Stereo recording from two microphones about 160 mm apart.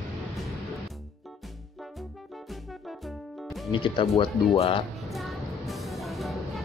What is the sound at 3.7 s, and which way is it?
Speech, 30° left (ahead or behind).